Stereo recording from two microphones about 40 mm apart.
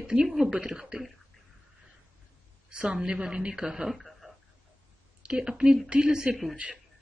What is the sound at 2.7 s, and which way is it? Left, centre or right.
A woman's voice, right.